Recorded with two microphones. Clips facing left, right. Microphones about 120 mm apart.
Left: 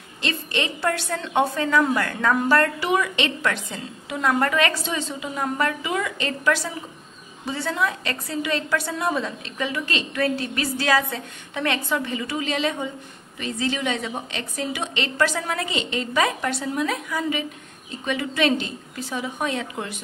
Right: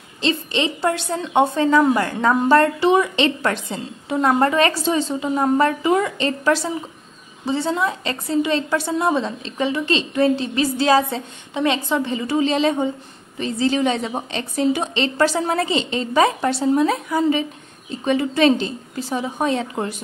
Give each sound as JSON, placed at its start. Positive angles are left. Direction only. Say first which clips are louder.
{"t": 0.2, "sound": "a woman's voice", "louder": "right 6 dB", "side_deg": -25}